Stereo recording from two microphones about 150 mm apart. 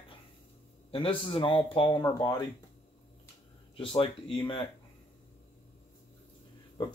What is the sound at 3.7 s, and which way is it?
Speech, 35° left (ahead or behind).